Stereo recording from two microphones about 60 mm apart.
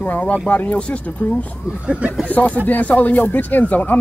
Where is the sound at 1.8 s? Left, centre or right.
Right.